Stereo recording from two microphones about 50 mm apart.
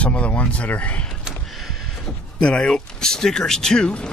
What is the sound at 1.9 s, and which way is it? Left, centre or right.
Speech, centre.